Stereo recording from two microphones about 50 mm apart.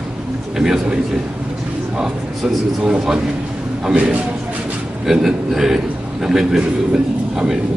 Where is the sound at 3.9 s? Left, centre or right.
Right.